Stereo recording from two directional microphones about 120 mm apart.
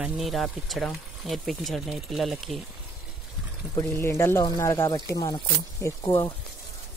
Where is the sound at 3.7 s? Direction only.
25° left (ahead or behind).